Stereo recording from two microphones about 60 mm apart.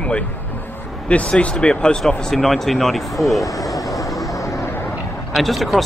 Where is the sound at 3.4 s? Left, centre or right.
Left.